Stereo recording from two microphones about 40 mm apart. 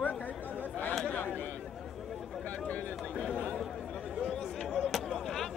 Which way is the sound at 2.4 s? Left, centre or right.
Left.